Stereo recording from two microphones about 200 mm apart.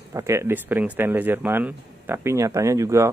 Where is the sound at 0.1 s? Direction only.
15° right (ahead or behind).